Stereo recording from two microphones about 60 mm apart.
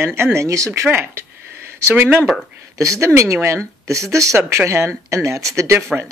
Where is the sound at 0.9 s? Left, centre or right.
Right.